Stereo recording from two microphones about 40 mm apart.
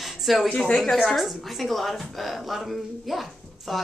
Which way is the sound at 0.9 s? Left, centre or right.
Centre.